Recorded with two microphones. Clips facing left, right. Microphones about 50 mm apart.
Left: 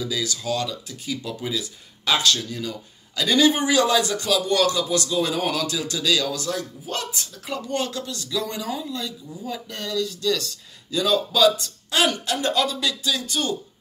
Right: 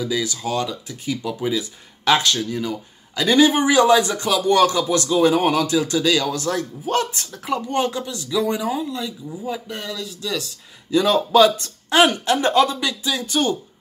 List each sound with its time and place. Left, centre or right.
0.0 s speech: right
7.4 s a man's voice: right
10.9 s a man's voice: right